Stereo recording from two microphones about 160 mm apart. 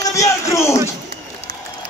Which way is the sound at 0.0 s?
20° left (ahead or behind).